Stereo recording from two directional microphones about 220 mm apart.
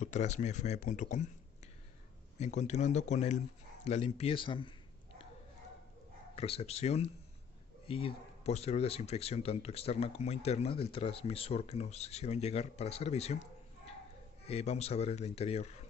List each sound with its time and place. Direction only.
0.0 s speech: 30° left (ahead or behind)
2.3 s speech: 30° left (ahead or behind)
6.3 s speech: 25° left (ahead or behind)
14.4 s speech: 30° left (ahead or behind)